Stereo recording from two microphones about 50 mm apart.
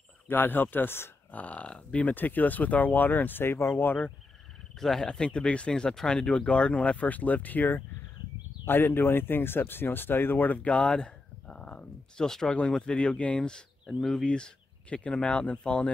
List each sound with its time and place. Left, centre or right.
0.3 s speech: left
1.3 s speech: left
4.7 s speech: centre